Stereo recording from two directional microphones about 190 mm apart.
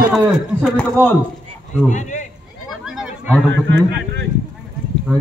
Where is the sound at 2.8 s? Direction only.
Centre (ahead or behind).